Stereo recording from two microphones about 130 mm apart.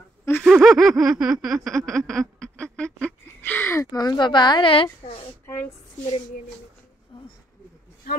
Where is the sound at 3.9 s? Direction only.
30° left (ahead or behind).